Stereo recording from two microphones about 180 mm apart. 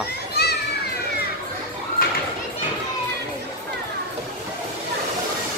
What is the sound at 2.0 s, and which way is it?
Children playing, 55° left (ahead or behind).